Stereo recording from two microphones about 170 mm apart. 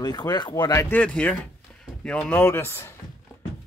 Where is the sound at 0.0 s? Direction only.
25° left (ahead or behind).